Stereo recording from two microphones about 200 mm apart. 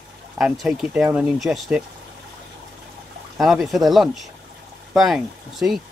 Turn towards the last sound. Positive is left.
turn(degrees=0)  # may be behind; listen again after turning